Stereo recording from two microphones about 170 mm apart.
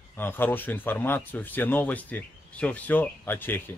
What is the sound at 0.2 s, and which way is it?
Speech, 10° left (ahead or behind).